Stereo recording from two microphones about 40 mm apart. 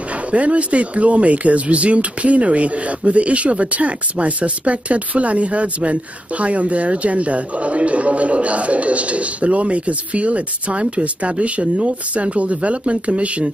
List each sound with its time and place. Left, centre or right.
0.3 s speech: right